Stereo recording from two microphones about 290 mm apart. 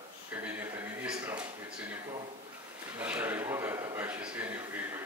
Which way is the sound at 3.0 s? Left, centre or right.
Centre.